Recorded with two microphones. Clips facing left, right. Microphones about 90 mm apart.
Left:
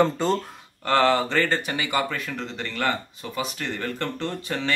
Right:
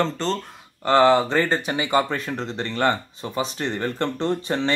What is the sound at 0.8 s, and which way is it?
Speech, 20° right (ahead or behind).